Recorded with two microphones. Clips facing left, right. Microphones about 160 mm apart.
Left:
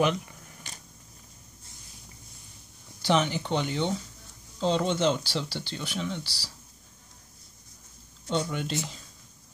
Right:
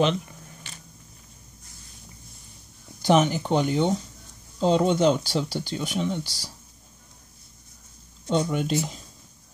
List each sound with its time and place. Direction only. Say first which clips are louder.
0.0 s camera: right 3 dB; 25° right (ahead or behind)
3.0 s speech: right 5 dB; 45° right (ahead or behind)
8.3 s speech: right 5 dB; 45° right (ahead or behind)